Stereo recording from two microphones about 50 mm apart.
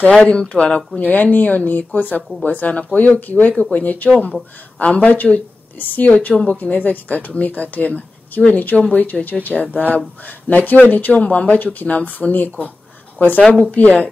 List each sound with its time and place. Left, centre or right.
0.2 s a woman's voice: left